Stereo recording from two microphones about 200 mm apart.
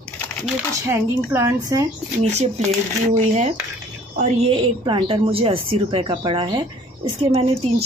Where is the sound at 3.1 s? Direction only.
35° right (ahead or behind).